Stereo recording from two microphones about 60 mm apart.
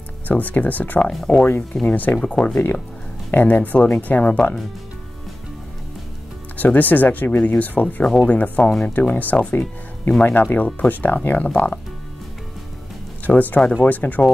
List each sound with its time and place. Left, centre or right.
0.3 s speech: left
2.4 s speech: centre
3.3 s speech: left
6.5 s speech: left
13.3 s speech: left